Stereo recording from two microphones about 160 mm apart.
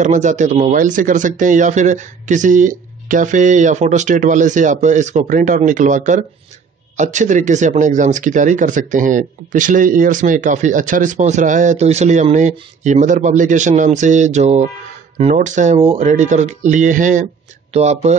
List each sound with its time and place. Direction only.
0.0 s speech: 50° right (ahead or behind)